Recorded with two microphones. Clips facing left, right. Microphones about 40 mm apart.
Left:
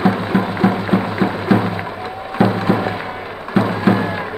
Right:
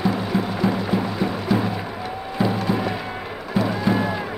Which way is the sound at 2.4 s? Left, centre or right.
Left.